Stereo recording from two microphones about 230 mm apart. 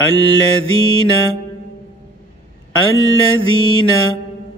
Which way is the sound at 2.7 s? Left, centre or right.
Left.